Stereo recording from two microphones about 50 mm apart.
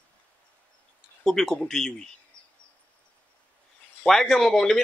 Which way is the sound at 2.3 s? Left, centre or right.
Right.